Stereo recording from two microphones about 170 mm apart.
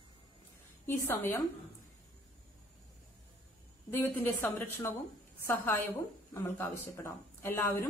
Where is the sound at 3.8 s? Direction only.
15° left (ahead or behind).